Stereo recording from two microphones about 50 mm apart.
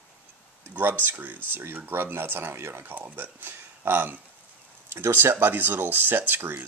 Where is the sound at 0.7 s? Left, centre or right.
Right.